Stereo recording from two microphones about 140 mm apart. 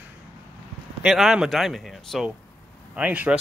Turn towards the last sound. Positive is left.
turn(degrees=-10)  # may be behind; listen again after turning